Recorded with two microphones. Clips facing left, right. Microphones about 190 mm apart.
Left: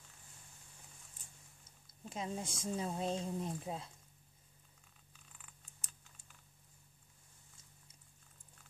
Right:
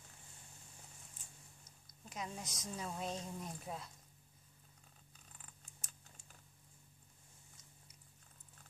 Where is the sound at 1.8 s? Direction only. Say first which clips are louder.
Left 4 dB; 30° left (ahead or behind).